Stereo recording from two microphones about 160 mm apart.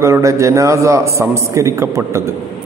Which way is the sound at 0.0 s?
20° right (ahead or behind).